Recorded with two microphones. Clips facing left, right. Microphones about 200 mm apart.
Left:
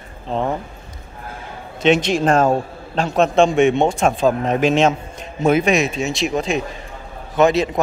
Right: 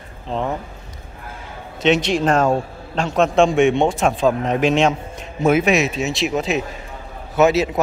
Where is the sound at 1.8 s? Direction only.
50° left (ahead or behind).